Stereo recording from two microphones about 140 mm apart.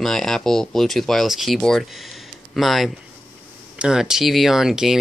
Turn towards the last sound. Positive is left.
turn(degrees=-5)  # may be behind; listen again after turning